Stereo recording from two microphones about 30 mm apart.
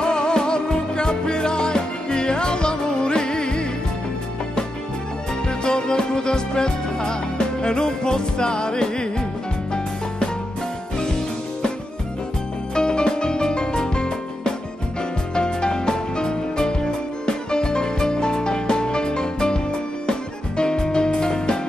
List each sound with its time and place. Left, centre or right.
0.0 s music: left
5.6 s music: left
12.7 s music: left